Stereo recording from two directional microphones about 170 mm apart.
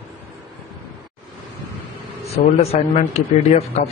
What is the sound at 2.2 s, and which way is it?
Speech, 35° left (ahead or behind).